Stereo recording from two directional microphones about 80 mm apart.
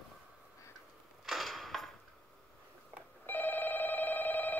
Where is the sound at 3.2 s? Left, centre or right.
Left.